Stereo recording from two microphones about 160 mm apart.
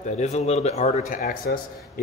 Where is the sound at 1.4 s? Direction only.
75° left (ahead or behind).